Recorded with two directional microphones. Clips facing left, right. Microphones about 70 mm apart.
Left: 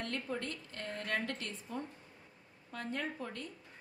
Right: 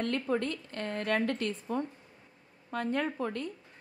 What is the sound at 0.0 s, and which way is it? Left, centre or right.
A woman's voice, right.